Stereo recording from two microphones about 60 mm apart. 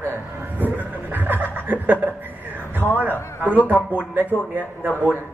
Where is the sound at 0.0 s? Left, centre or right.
Right.